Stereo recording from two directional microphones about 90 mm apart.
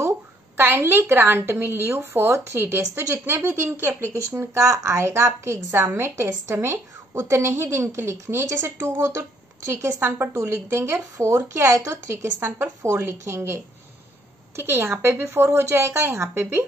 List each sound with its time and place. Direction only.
0.6 s a woman's voice: 25° right (ahead or behind)